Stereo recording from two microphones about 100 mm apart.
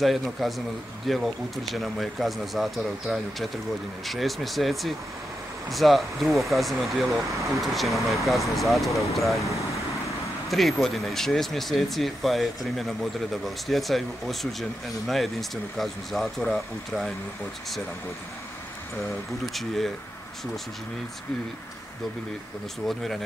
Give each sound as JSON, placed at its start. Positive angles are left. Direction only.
{"t": 0.0, "sound": "speech", "side_deg": 0}
{"t": 9.4, "sound": "vehicle", "side_deg": 30}
{"t": 10.5, "sound": "speech", "side_deg": 0}
{"t": 19.4, "sound": "speech", "side_deg": 0}